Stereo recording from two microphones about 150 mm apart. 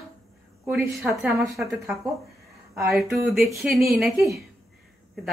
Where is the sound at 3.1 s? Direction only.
Centre (ahead or behind).